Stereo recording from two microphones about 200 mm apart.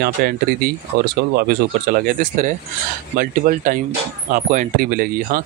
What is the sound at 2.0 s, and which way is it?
Speech, 40° right (ahead or behind).